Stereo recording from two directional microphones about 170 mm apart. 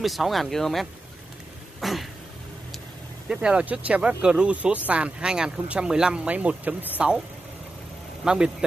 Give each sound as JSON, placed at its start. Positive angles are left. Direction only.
{"t": 0.0, "sound": "speech", "side_deg": 0}
{"t": 1.8, "sound": "throat clearing", "side_deg": 0}
{"t": 3.3, "sound": "speech", "side_deg": -5}
{"t": 8.2, "sound": "speech", "side_deg": -5}